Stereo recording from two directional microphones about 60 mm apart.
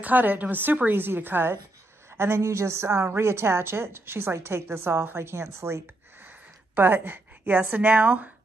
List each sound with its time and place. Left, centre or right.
0.0 s a woman's voice: right
6.7 s speech: right